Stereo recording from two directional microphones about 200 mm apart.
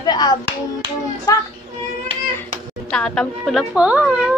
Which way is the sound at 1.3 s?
15° left (ahead or behind).